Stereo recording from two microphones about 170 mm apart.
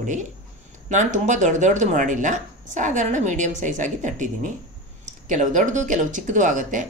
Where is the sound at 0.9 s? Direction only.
45° right (ahead or behind).